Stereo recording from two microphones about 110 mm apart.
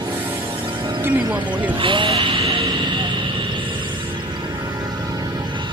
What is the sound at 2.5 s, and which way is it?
Music, 55° right (ahead or behind).